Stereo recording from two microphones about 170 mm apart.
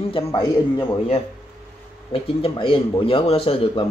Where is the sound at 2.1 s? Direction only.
30° left (ahead or behind).